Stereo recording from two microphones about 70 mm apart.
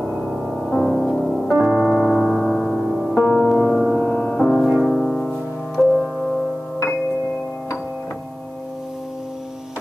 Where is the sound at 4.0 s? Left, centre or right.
Centre.